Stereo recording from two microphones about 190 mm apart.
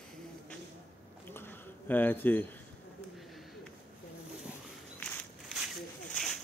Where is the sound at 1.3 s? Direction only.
10° left (ahead or behind).